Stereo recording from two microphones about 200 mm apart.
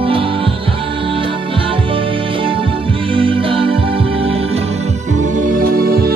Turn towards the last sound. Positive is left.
turn(degrees=-50)  # may be behind; listen again after turning